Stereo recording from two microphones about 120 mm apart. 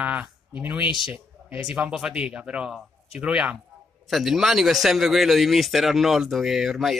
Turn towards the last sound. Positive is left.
turn(degrees=0)  # may be behind; listen again after turning